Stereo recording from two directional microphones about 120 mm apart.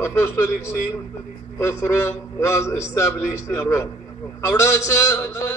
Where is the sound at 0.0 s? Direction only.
20° left (ahead or behind).